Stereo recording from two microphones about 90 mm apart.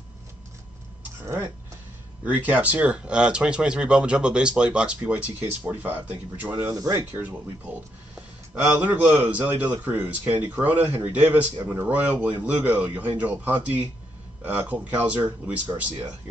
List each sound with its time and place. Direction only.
1.2 s speech: 25° right (ahead or behind)
6.7 s speech: 40° right (ahead or behind)
7.0 s a man's voice: 20° right (ahead or behind)
8.5 s a man's voice: 20° right (ahead or behind)